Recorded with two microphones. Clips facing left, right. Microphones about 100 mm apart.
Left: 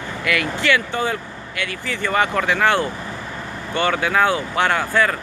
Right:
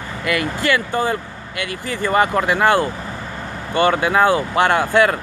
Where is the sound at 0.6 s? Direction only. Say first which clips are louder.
Right 1 dB; 45° right (ahead or behind).